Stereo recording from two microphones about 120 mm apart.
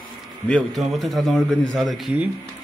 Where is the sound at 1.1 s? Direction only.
Centre (ahead or behind).